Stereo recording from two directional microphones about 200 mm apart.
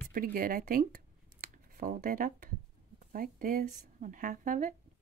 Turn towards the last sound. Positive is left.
turn(degrees=-40)  # may be behind; listen again after turning